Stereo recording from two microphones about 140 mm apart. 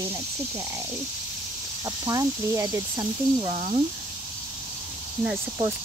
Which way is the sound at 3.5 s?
60° right (ahead or behind).